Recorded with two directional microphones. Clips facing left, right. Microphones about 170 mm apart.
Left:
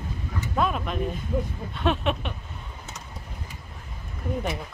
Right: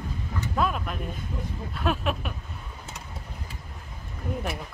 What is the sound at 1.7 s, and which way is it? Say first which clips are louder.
Speech: left 3 dB; 5° right (ahead or behind).